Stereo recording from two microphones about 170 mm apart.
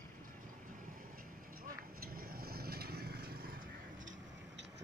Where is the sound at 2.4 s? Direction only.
65° right (ahead or behind).